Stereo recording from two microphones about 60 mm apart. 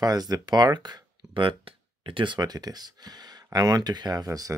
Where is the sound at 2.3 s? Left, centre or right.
Right.